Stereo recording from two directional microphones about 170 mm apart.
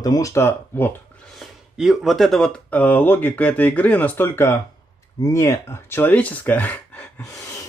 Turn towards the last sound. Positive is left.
turn(degrees=10)  # may be behind; listen again after turning